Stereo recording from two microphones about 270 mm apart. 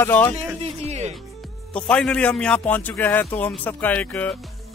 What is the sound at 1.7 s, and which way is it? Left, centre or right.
A man's voice, centre.